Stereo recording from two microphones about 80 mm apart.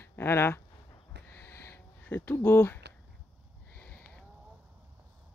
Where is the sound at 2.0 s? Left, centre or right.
Left.